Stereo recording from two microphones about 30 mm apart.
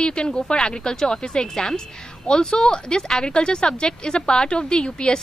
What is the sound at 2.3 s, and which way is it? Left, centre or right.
A woman's voice, left.